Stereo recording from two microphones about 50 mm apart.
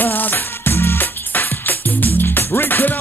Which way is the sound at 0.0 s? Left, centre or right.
Left.